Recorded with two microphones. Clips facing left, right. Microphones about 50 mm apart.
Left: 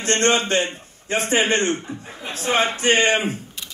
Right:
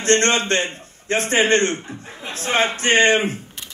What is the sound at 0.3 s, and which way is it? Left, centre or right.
A man's voice, centre.